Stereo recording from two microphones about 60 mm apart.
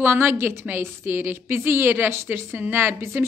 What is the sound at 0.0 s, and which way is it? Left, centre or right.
A woman's voice, right.